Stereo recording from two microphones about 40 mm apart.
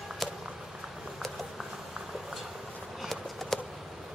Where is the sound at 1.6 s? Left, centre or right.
Centre.